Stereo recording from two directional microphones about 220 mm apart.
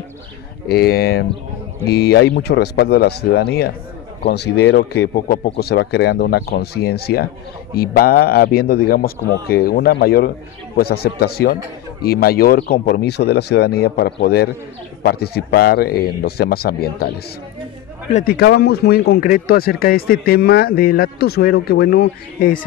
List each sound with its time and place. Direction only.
0.7 s speech: 45° left (ahead or behind)
18.1 s speech: 45° left (ahead or behind)